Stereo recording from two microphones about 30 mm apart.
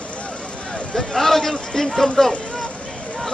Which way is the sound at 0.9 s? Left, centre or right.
Centre.